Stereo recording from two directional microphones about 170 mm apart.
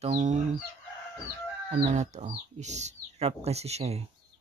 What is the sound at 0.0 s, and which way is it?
Chicken, 45° right (ahead or behind).